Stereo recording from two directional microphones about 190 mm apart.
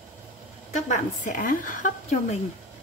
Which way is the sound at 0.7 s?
40° left (ahead or behind).